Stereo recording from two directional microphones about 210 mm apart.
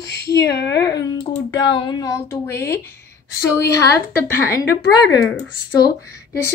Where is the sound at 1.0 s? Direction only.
20° left (ahead or behind).